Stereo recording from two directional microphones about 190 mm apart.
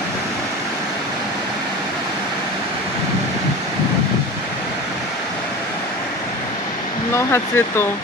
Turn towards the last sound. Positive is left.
turn(degrees=15)  # may be behind; listen again after turning